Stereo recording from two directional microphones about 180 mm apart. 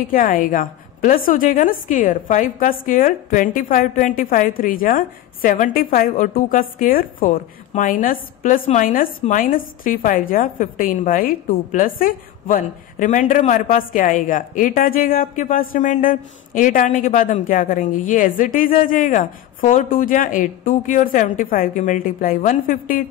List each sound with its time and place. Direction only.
0.1 s a woman's voice: 50° left (ahead or behind)